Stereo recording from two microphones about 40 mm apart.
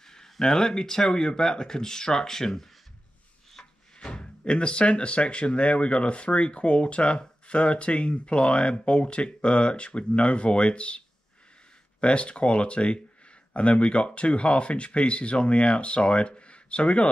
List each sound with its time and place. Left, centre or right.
0.0 s speech: centre
12.0 s speech: left